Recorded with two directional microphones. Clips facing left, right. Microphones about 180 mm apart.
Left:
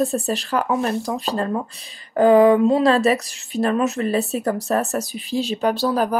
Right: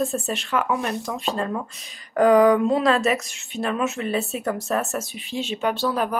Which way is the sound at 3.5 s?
40° left (ahead or behind).